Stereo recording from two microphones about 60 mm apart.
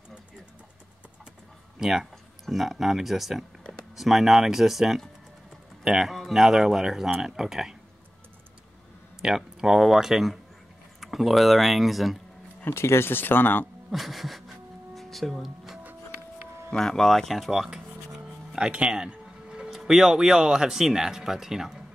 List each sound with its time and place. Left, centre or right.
1.8 s speech: centre
9.2 s speech: centre
12.6 s speech: left
13.8 s speech: centre
15.0 s music: centre
16.7 s speech: centre
17.6 s music: centre
19.7 s speech: centre